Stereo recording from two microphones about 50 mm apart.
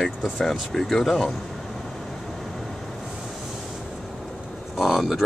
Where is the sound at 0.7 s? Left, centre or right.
Centre.